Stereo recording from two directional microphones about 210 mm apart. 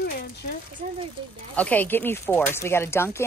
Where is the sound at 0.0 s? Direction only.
50° left (ahead or behind).